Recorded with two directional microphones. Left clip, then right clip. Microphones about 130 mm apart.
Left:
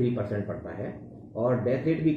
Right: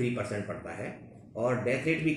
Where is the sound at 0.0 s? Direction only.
15° right (ahead or behind).